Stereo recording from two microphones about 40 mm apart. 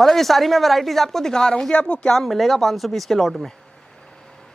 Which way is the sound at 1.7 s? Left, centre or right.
Left.